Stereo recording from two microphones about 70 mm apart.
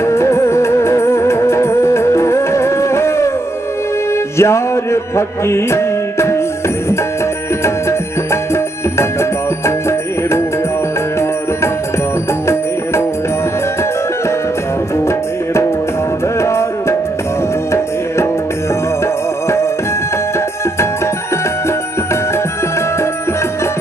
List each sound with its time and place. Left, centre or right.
0.0 s music: left
4.4 s music: left
8.9 s music: left
15.0 s music: left